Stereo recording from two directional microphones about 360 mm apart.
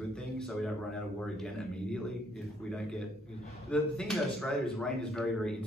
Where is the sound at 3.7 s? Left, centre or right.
Centre.